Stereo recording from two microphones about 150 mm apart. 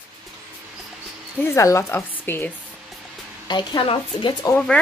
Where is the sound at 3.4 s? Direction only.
30° left (ahead or behind).